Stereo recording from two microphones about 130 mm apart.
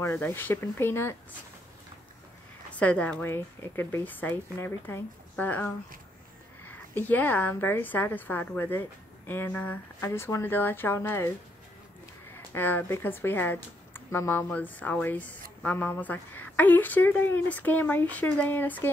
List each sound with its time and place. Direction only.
0.0 s a woman's voice: 15° left (ahead or behind)
2.7 s a woman's voice: 10° left (ahead or behind)
12.5 s a woman's voice: 15° left (ahead or behind)